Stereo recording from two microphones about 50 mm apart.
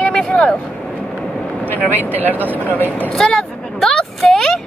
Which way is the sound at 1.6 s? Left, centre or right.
Left.